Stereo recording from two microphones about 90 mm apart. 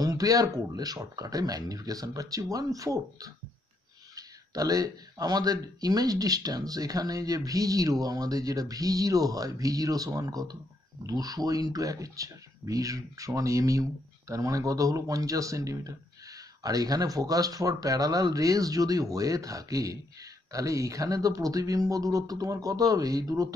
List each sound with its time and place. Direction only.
0.0 s speech: 40° right (ahead or behind)